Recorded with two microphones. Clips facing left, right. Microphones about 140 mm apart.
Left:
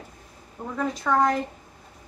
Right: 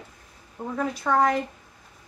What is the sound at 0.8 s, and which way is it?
Speech, 5° right (ahead or behind).